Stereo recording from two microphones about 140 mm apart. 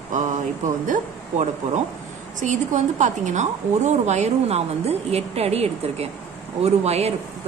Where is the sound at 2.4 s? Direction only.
60° right (ahead or behind).